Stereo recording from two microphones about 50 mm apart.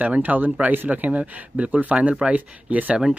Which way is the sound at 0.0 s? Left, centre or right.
Right.